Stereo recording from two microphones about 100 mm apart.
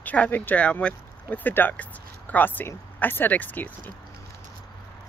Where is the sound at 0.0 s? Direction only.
15° left (ahead or behind).